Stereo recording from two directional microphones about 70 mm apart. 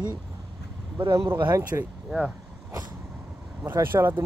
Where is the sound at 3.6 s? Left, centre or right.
Right.